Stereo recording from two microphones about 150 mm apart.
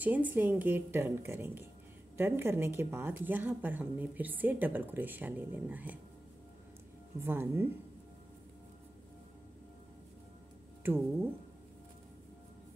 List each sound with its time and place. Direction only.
0.0 s speech: 10° right (ahead or behind)
7.2 s speech: 15° right (ahead or behind)
10.8 s speech: 15° right (ahead or behind)